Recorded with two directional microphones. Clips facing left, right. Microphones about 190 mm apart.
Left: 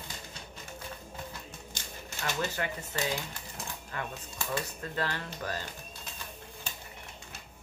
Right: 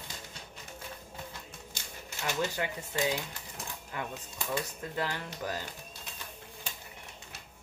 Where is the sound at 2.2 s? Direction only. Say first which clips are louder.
Right 1 dB; 15° right (ahead or behind).